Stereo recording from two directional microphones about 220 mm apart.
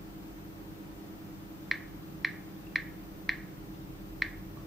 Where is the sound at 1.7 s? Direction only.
Centre (ahead or behind).